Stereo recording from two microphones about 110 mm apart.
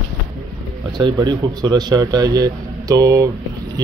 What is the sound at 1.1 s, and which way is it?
Speech, 40° right (ahead or behind).